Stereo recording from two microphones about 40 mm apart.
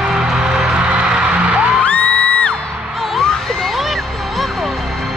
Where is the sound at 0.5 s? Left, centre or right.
Centre.